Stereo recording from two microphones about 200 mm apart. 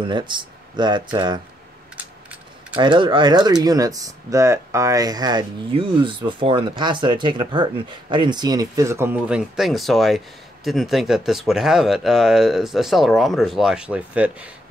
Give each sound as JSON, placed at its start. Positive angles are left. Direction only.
{"t": 0.0, "sound": "speech", "side_deg": -25}
{"t": 2.8, "sound": "speech", "side_deg": -25}